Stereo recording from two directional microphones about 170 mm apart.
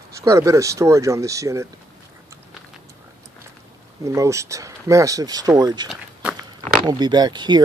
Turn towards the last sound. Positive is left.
turn(degrees=-25)  # may be behind; listen again after turning